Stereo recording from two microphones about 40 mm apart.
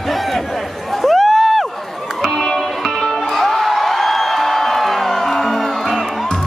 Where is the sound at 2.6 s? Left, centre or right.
Centre.